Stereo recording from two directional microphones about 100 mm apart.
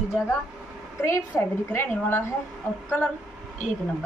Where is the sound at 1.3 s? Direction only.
20° left (ahead or behind).